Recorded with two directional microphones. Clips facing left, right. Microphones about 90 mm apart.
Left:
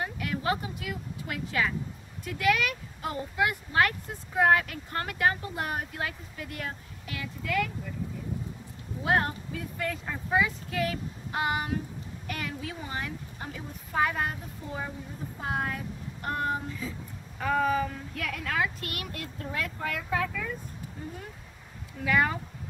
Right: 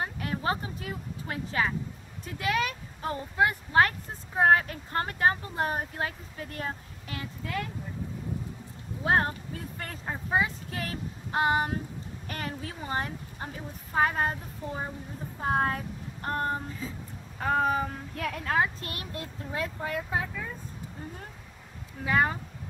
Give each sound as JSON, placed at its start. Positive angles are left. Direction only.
{"t": 0.0, "sound": "speech", "side_deg": -35}
{"t": 9.0, "sound": "speech", "side_deg": -30}
{"t": 15.4, "sound": "speech", "side_deg": -35}
{"t": 22.0, "sound": "speech", "side_deg": -30}